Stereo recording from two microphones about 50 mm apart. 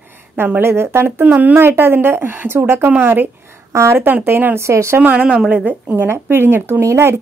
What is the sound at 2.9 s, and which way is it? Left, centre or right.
Speech, right.